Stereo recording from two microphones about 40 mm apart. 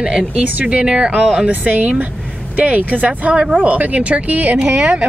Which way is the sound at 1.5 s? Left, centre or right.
Right.